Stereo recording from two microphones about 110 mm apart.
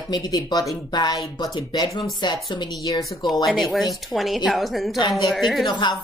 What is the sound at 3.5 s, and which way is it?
A woman's voice, centre (ahead or behind).